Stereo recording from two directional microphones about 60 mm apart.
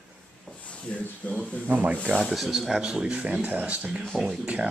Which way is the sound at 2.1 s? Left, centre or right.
Centre.